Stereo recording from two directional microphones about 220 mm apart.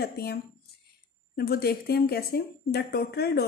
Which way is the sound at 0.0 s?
45° left (ahead or behind).